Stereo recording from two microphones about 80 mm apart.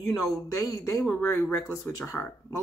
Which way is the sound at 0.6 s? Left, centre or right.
Left.